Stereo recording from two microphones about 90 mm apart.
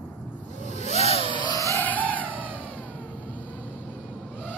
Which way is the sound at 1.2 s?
60° left (ahead or behind).